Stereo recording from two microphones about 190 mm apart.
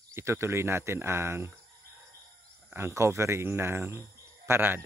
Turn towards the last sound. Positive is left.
turn(degrees=-10)  # may be behind; listen again after turning